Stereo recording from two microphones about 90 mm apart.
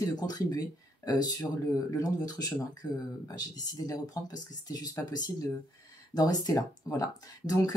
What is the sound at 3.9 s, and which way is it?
Speech, 45° left (ahead or behind).